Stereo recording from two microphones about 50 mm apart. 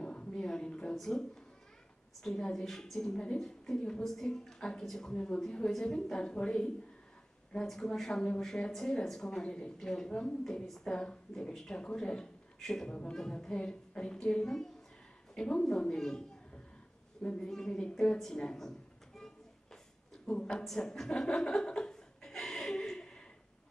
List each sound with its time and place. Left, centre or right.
0.0 s a sound: centre
0.9 s a woman's voice: centre
7.6 s a woman's voice: centre
10.9 s a woman's voice: centre
12.8 s a woman's voice: centre
17.4 s a woman's voice: centre
18.2 s a sound: centre
20.2 s a woman's voice: centre
20.6 s chuckle: centre